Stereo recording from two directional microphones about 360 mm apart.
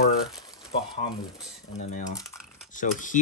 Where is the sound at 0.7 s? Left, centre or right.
Centre.